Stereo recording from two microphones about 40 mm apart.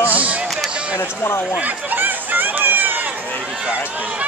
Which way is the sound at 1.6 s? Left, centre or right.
Right.